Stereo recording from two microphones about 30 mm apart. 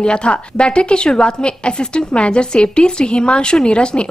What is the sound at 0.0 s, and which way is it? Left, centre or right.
A woman's voice, left.